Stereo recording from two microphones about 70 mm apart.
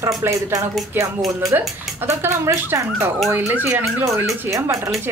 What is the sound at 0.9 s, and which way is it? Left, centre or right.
Speech, right.